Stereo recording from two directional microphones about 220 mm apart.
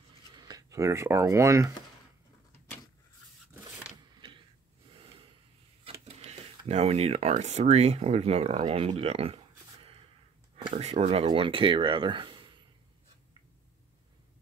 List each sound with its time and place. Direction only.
0.4 s speech: 15° right (ahead or behind)
5.9 s a sound: 25° right (ahead or behind)
6.6 s speech: 30° right (ahead or behind)